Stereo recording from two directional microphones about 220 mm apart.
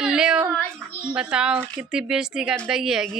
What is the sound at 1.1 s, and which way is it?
Speech, 5° right (ahead or behind).